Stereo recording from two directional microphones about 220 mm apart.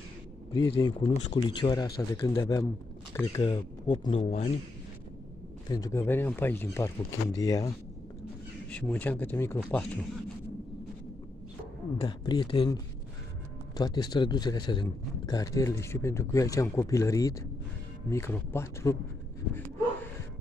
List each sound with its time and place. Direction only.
0.6 s a man's voice: 20° left (ahead or behind)
5.7 s a man's voice: 15° left (ahead or behind)
8.6 s a man's voice: 5° left (ahead or behind)
12.0 s a man's voice: 20° left (ahead or behind)